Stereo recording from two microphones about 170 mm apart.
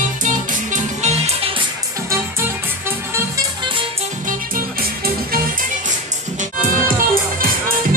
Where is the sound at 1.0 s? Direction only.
40° right (ahead or behind).